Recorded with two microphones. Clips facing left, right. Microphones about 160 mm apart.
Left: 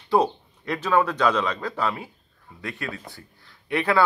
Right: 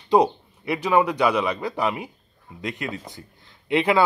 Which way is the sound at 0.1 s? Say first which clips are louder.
Right 3 dB; 15° right (ahead or behind).